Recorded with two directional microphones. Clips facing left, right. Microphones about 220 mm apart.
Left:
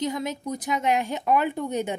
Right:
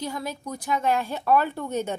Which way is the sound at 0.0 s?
20° left (ahead or behind).